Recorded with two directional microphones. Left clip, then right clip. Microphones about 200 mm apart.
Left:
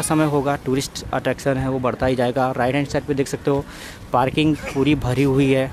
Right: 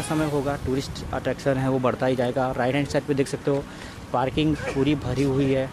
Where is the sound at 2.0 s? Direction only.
25° left (ahead or behind).